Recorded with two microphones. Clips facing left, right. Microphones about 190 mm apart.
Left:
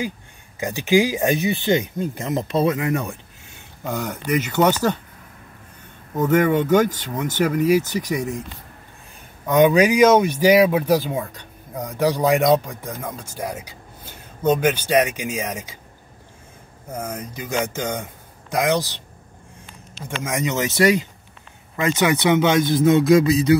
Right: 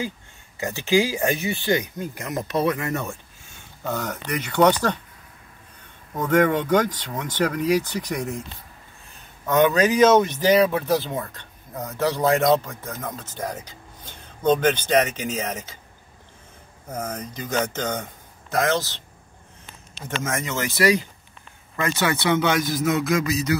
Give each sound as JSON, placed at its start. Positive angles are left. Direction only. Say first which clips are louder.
{"t": 0.6, "sound": "speech", "louder": "left 3 dB", "side_deg": 15}
{"t": 6.2, "sound": "speech", "louder": "left 2 dB", "side_deg": 10}
{"t": 9.5, "sound": "speech", "louder": "left 3 dB", "side_deg": 15}
{"t": 16.9, "sound": "speech", "louder": "left 1 dB", "side_deg": 10}
{"t": 20.1, "sound": "speech", "louder": "left 3 dB", "side_deg": 15}